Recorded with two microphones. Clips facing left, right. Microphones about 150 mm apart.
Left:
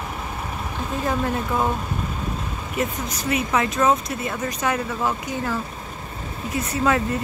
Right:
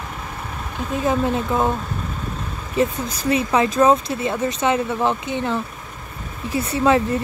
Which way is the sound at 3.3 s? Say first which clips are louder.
Right 4 dB; 30° right (ahead or behind).